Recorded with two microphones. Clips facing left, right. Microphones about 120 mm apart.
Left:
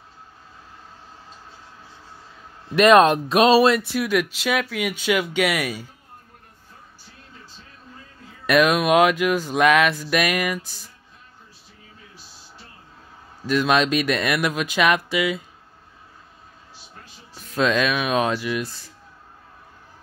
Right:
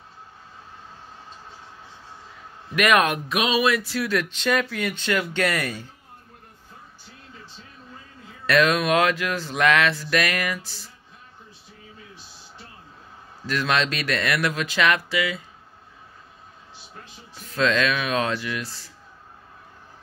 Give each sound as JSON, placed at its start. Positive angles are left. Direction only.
{"t": 2.7, "sound": "speech", "side_deg": 30}
{"t": 3.7, "sound": "speech", "side_deg": 20}
{"t": 8.5, "sound": "speech", "side_deg": 15}
{"t": 13.5, "sound": "speech", "side_deg": 15}
{"t": 17.5, "sound": "speech", "side_deg": 15}